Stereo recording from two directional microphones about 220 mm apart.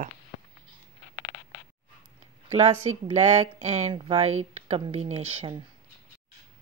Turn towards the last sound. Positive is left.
turn(degrees=-25)  # may be behind; listen again after turning